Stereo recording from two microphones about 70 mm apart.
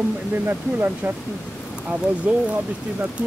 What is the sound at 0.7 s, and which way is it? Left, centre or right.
Speech, right.